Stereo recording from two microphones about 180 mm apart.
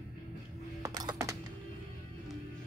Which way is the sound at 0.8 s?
20° right (ahead or behind).